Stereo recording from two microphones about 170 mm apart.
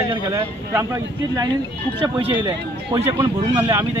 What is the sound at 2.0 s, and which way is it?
A man's voice, 25° right (ahead or behind).